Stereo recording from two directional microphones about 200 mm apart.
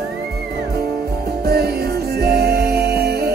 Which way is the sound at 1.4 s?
50° right (ahead or behind).